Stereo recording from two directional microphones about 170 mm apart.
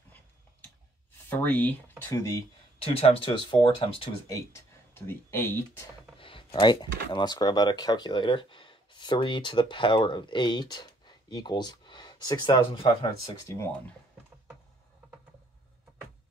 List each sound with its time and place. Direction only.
1.1 s speech: 10° left (ahead or behind)
2.8 s speech: 35° left (ahead or behind)
4.5 s speech: 15° left (ahead or behind)
6.1 s speech: 30° left (ahead or behind)